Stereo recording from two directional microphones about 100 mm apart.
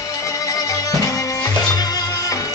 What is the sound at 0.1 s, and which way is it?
Music, 35° left (ahead or behind).